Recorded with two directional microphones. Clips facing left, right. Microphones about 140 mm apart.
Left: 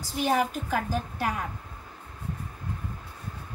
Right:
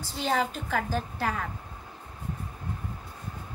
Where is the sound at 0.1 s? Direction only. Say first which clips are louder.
Left 2 dB; 15° left (ahead or behind).